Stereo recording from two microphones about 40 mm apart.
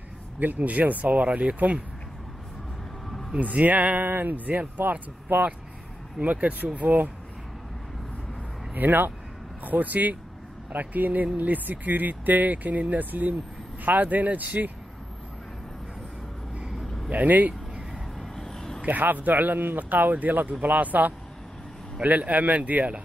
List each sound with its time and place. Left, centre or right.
0.4 s speech: right
3.3 s speech: right
4.9 s speech: right
8.7 s speech: right
16.8 s vehicle: centre
17.1 s speech: right
18.2 s a sound: centre
18.8 s speech: right